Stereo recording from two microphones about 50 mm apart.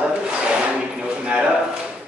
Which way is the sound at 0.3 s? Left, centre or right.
Right.